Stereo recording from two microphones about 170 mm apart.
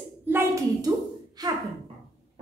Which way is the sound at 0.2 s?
15° right (ahead or behind).